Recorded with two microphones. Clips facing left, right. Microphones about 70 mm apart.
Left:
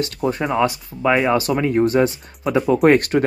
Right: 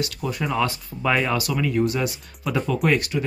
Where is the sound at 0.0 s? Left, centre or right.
Left.